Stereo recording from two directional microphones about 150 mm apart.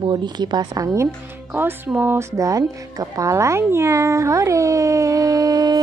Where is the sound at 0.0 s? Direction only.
30° right (ahead or behind).